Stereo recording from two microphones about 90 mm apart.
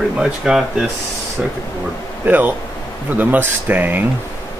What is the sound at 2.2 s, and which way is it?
Speech, 20° right (ahead or behind).